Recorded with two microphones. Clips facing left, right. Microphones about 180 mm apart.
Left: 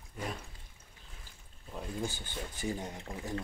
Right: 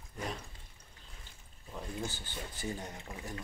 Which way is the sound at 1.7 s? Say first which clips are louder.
Left 2 dB; 15° left (ahead or behind).